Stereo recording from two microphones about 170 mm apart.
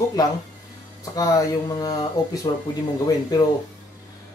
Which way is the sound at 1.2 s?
20° left (ahead or behind).